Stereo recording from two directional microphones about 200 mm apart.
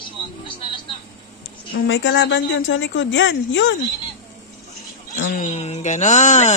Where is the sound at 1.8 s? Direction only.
70° left (ahead or behind).